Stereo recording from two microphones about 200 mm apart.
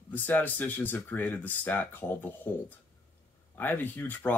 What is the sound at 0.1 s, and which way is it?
Speech, 10° left (ahead or behind).